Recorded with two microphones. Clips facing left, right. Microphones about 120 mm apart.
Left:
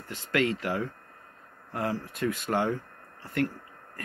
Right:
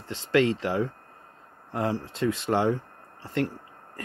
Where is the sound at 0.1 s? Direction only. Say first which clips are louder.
Right 5 dB; 25° right (ahead or behind).